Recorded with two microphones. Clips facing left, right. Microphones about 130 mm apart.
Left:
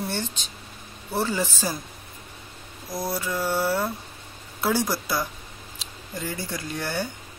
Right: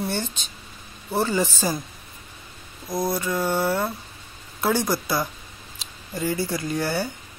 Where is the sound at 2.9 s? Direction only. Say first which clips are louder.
Right 4 dB; 15° right (ahead or behind).